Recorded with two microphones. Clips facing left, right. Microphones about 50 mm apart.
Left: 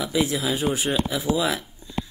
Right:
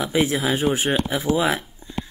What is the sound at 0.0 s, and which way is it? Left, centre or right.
Speech, right.